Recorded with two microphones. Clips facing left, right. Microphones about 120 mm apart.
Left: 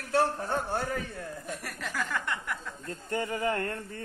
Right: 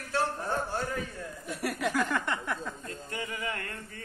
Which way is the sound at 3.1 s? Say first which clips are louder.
Left 7 dB; 45° left (ahead or behind).